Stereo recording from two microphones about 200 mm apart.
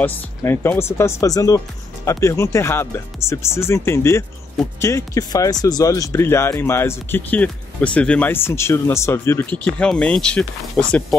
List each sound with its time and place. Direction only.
0.0 s speech: 10° left (ahead or behind)